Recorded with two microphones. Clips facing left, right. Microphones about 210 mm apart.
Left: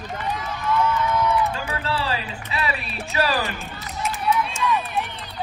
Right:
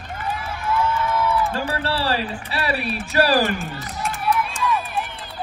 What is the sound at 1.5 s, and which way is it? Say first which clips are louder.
Speech: right 3 dB; 40° right (ahead or behind).